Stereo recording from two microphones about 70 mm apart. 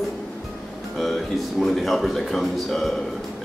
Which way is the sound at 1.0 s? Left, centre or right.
Centre.